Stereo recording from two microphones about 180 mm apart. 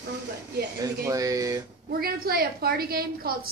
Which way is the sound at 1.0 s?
20° right (ahead or behind).